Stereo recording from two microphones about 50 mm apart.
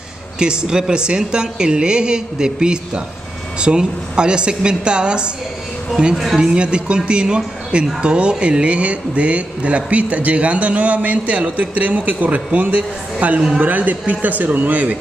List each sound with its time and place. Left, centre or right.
0.4 s a woman's voice: centre
6.1 s a woman's voice: centre; by 15.0 s right